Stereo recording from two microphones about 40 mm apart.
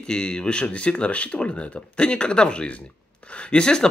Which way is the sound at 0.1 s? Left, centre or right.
Left.